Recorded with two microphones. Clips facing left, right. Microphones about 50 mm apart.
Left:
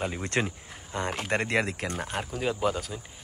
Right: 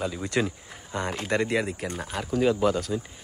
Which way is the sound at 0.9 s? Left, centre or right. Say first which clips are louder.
Right 1 dB; centre.